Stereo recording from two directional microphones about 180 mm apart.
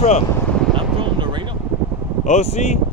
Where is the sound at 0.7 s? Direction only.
25° right (ahead or behind).